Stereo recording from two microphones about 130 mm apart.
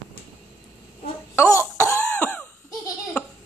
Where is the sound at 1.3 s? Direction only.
20° left (ahead or behind).